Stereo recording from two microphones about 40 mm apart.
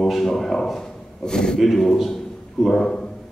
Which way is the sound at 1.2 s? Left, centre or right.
Centre.